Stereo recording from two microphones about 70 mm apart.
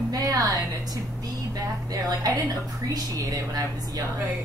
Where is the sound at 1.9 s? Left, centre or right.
Right.